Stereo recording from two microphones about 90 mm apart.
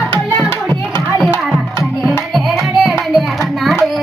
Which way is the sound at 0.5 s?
25° left (ahead or behind).